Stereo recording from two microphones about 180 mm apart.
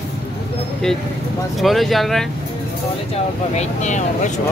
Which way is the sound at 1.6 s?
Centre (ahead or behind).